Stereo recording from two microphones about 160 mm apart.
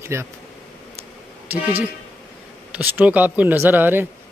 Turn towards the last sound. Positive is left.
turn(degrees=-10)  # may be behind; listen again after turning